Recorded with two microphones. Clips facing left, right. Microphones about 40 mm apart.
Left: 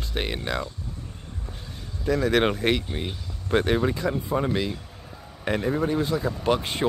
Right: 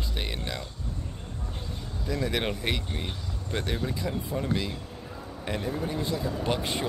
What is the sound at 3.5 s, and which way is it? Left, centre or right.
Speech, left.